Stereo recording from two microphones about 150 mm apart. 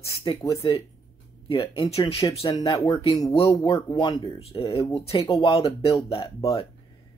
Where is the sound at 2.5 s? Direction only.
25° left (ahead or behind).